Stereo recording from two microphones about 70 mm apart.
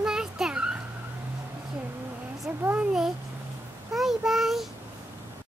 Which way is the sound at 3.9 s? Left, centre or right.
Centre.